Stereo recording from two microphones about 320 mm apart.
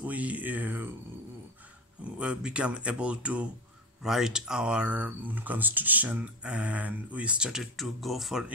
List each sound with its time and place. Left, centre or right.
0.0 s speech: centre
2.0 s speech: centre